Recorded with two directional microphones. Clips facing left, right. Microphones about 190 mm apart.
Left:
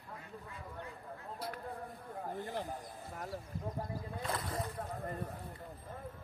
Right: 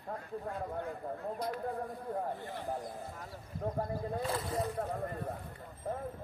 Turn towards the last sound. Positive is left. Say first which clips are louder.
# right 4 dB
turn(degrees=-30)  # may be behind; listen again after turning